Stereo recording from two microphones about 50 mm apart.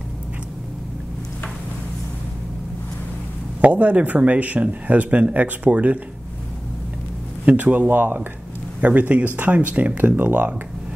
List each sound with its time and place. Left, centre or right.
3.6 s speech: right
7.4 s speech: right